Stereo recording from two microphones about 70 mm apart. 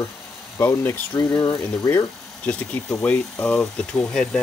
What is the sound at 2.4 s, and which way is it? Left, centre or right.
Speech, left.